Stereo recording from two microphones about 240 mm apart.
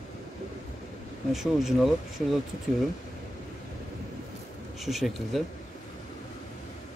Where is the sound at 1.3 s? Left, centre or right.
Centre.